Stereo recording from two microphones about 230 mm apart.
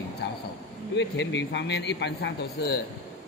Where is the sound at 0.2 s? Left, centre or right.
Left.